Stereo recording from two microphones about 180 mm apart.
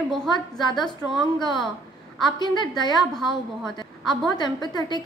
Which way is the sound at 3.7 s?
25° left (ahead or behind).